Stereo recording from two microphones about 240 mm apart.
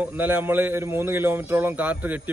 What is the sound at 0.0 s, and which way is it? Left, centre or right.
A man's voice, centre.